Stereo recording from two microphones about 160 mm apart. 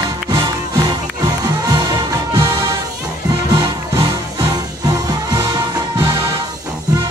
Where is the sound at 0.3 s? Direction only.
25° right (ahead or behind).